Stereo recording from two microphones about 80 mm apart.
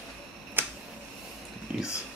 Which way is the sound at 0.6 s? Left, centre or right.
Right.